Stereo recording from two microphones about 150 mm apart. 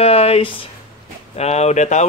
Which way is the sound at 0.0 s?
40° left (ahead or behind).